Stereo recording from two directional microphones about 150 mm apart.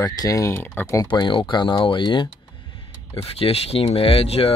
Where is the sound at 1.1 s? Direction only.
35° left (ahead or behind).